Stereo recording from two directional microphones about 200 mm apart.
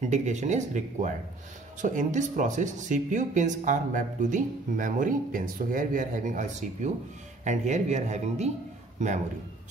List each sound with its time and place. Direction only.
0.0 s speech: 35° right (ahead or behind)